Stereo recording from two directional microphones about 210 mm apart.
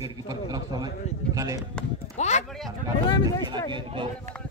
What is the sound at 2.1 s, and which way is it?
A man's voice, 35° left (ahead or behind).